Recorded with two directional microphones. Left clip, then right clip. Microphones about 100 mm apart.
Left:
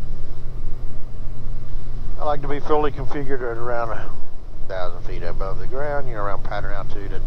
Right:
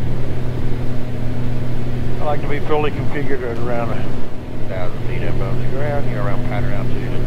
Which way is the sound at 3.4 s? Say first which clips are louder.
Right 2 dB; 5° left (ahead or behind).